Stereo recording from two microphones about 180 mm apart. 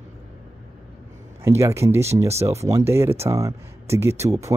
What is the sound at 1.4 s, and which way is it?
Speech, 15° right (ahead or behind).